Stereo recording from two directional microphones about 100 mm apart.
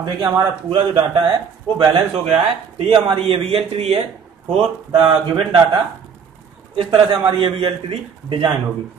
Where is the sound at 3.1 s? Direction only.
70° right (ahead or behind); by 4.0 s 90° right.